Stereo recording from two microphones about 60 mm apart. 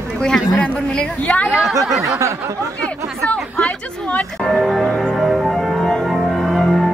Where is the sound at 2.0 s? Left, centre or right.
Right.